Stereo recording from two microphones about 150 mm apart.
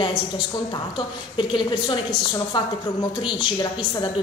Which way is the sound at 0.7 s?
35° left (ahead or behind).